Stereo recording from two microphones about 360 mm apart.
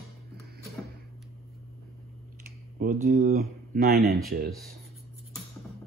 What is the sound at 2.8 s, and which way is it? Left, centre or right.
Speech, right.